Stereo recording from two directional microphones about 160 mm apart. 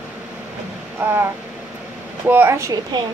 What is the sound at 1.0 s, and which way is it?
Speech, 10° right (ahead or behind).